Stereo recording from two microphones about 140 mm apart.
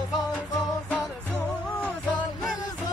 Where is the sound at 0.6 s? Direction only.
5° left (ahead or behind).